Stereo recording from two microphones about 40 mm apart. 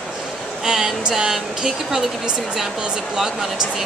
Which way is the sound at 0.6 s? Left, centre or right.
Centre.